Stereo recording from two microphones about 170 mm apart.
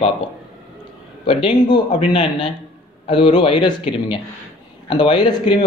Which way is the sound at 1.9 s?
35° left (ahead or behind).